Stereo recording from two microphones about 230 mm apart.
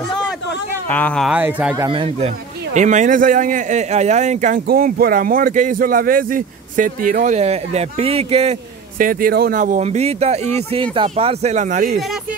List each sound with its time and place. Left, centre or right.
0.8 s speech: centre
1.8 s a man's voice: right